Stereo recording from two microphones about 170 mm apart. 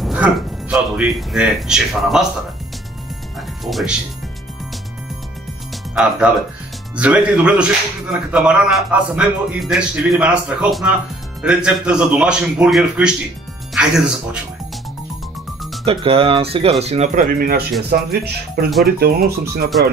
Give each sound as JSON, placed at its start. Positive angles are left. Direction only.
{"t": 0.0, "sound": "speech", "side_deg": -5}
{"t": 3.6, "sound": "speech", "side_deg": 0}
{"t": 7.0, "sound": "speech", "side_deg": -5}
{"t": 15.8, "sound": "speech", "side_deg": -35}
{"t": 17.1, "sound": "speech", "side_deg": -55}